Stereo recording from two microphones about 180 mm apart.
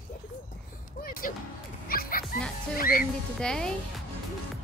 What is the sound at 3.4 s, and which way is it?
Speech, 5° left (ahead or behind).